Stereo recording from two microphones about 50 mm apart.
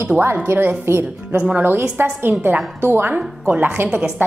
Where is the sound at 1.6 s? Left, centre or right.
Right.